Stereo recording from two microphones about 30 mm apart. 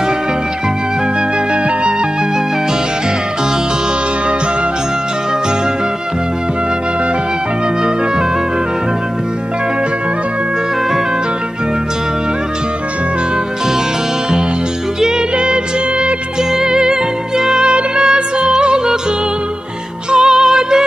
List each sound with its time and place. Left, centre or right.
15.3 s music: right
20.1 s music: right